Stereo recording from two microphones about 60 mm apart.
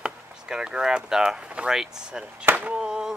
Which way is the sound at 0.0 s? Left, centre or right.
Centre.